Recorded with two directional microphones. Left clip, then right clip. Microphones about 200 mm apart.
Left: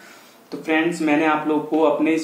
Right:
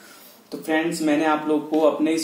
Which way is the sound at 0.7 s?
35° right (ahead or behind).